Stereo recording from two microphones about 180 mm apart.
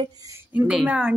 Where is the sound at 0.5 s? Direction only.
5° right (ahead or behind).